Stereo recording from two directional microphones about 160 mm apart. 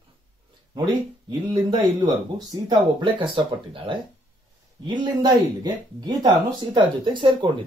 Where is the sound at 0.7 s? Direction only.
30° right (ahead or behind).